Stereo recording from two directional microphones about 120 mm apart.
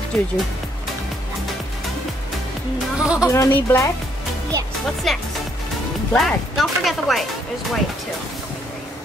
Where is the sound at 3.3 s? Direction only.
20° left (ahead or behind).